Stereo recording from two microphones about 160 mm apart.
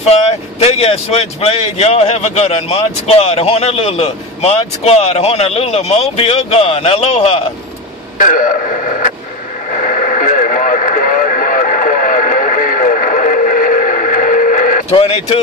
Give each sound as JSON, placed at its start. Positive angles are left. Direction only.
{"t": 0.1, "sound": "speech", "side_deg": 40}
{"t": 8.2, "sound": "a man's voice", "side_deg": 55}
{"t": 9.7, "sound": "radio", "side_deg": 50}
{"t": 14.9, "sound": "speech", "side_deg": 35}